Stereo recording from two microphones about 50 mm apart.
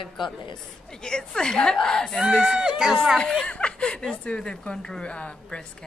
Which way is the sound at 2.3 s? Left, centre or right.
Centre.